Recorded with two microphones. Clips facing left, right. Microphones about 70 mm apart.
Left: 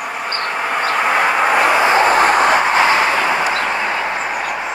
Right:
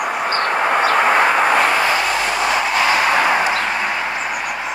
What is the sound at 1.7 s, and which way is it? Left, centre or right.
Vehicle, left.